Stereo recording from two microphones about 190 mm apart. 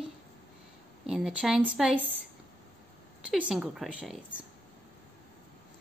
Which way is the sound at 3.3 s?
5° right (ahead or behind).